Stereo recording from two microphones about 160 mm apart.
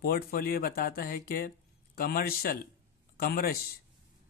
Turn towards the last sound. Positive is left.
turn(degrees=70)  # may be behind; listen again after turning